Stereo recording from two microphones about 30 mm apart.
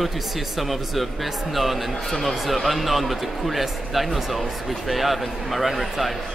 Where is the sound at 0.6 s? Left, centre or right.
Centre.